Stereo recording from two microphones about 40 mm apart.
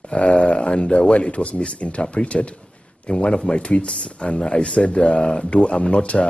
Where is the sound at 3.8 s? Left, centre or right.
Centre.